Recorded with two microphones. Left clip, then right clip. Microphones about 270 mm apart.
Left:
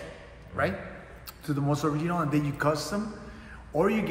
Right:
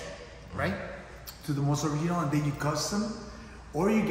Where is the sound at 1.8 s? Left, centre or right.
Centre.